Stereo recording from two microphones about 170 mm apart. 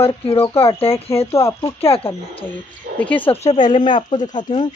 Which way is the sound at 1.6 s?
35° left (ahead or behind).